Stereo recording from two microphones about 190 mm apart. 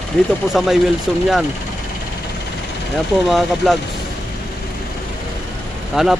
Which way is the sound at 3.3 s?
Centre (ahead or behind).